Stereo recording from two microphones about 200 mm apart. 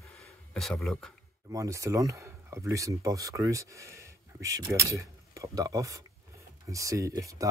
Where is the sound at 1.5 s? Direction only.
15° right (ahead or behind).